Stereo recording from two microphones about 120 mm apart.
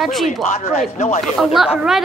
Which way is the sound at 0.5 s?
65° left (ahead or behind).